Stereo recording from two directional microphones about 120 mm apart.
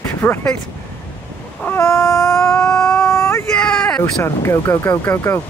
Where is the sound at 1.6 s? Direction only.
20° left (ahead or behind).